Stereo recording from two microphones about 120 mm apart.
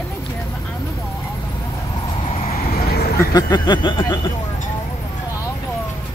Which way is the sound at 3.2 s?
35° left (ahead or behind).